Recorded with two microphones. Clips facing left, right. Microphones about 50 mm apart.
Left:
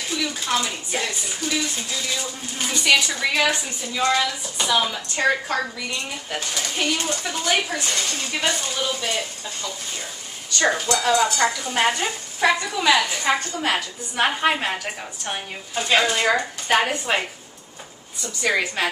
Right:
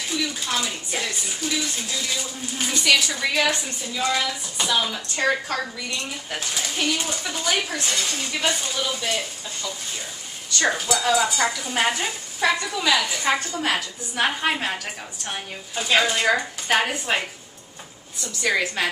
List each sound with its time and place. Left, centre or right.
0.2 s a woman's voice: centre
10.9 s a woman's voice: centre
18.4 s a woman's voice: centre